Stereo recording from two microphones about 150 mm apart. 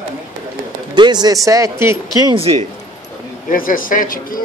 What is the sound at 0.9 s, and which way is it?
Speech, 30° right (ahead or behind).